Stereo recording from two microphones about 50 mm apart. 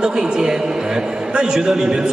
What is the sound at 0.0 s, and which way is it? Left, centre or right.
A man's voice, centre.